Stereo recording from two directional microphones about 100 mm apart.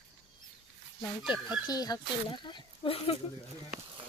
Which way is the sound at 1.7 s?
40° left (ahead or behind).